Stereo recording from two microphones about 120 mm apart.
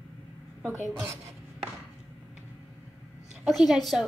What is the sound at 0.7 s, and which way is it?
Speech, 20° right (ahead or behind).